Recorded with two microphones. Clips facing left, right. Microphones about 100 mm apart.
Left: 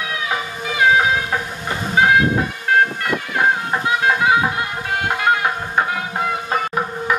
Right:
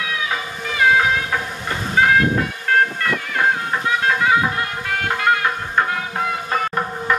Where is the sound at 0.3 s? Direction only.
15° left (ahead or behind).